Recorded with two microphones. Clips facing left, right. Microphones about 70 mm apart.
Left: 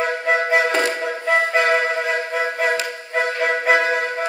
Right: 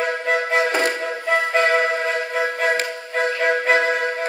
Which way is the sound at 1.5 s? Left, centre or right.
Left.